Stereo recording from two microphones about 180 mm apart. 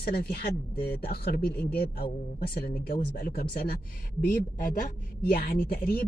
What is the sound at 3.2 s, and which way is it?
Speech, 60° left (ahead or behind).